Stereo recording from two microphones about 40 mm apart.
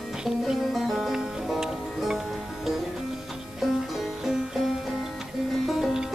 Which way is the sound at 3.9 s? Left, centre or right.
Centre.